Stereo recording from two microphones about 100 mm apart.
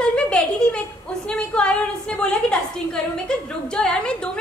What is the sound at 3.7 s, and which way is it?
Speech, 10° left (ahead or behind).